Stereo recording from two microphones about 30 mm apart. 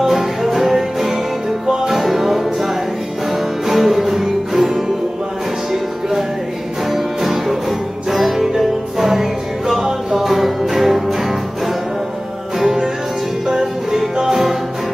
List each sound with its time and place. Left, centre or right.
0.0 s music: centre
12.5 s music: centre